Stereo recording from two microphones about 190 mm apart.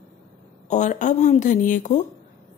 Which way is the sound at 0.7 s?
40° left (ahead or behind).